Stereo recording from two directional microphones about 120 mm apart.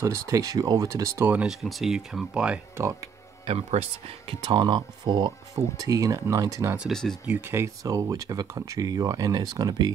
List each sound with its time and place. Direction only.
0.0 s speech: 25° right (ahead or behind)
1.3 s speech: 5° right (ahead or behind)
2.8 s speech: 20° right (ahead or behind)
3.4 s speech: 60° right (ahead or behind)
4.5 s speech: 40° right (ahead or behind)
5.8 s speech: 30° right (ahead or behind)
6.9 s speech: 5° left (ahead or behind)
7.2 s speech: 20° right (ahead or behind)